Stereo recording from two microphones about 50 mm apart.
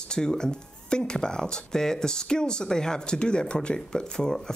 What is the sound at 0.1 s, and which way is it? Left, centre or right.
Speech, centre.